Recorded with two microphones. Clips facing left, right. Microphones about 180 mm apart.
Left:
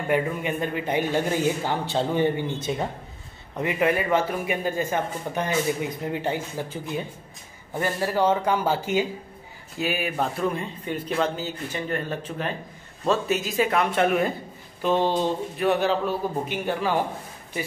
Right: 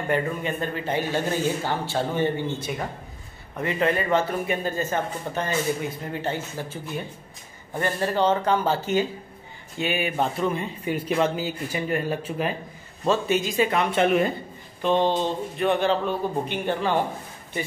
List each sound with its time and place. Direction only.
0.1 s a man's voice: 15° left (ahead or behind)